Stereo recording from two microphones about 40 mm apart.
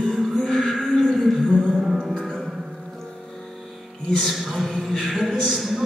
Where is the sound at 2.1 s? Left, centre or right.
Centre.